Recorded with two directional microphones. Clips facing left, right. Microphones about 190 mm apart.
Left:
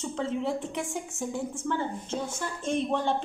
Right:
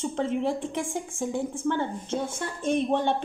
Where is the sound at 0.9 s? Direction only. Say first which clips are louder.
Right 3 dB; 50° right (ahead or behind).